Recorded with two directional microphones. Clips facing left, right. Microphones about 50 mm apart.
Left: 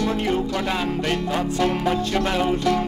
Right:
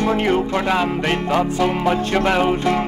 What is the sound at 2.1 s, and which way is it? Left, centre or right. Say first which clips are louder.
Music: right 4 dB; right.